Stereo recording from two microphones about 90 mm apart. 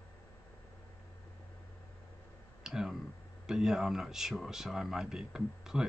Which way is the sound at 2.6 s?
5° right (ahead or behind).